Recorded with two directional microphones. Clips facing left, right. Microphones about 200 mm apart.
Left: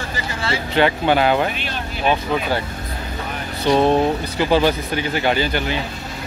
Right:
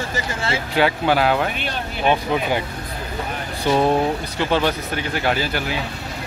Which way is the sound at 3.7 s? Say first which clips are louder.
Left 2 dB; 10° right (ahead or behind).